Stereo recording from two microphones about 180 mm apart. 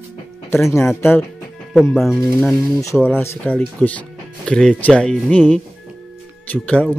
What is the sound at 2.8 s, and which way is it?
Speech, 15° left (ahead or behind).